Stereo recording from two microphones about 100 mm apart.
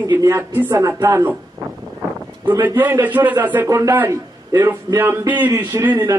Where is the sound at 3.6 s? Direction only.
30° right (ahead or behind).